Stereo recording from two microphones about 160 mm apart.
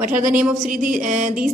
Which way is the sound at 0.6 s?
55° right (ahead or behind).